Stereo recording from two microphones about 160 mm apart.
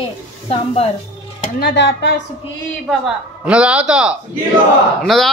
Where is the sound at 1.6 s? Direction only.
90° left.